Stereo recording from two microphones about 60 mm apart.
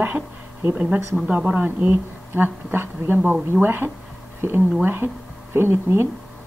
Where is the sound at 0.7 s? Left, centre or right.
Right.